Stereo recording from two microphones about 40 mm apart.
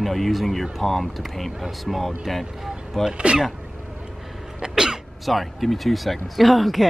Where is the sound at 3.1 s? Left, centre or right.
Right.